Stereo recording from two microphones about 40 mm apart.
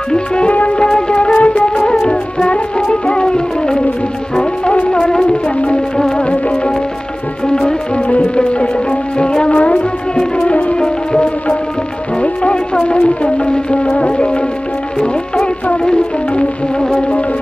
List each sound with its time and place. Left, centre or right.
0.1 s music: left
0.5 s music: left
0.9 s music: left
1.3 s music: left
2.0 s music: left
5.9 s music: centre
7.4 s music: left
9.5 s music: left
12.2 s music: left